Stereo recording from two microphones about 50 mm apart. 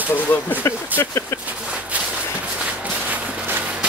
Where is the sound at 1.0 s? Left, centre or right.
Left.